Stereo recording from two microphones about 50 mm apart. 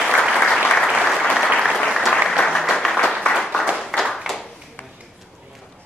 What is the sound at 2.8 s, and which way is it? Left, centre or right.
Applause, centre.